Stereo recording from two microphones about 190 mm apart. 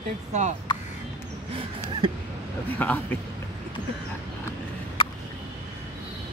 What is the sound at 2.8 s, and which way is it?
Speech, 10° left (ahead or behind).